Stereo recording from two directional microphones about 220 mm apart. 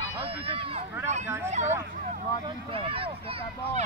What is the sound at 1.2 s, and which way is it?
Speech, 10° right (ahead or behind).